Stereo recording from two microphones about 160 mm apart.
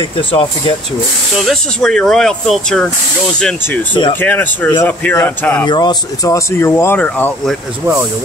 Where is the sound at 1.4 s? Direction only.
Centre (ahead or behind).